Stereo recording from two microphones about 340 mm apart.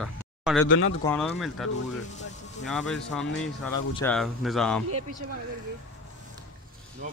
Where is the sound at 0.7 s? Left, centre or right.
Left.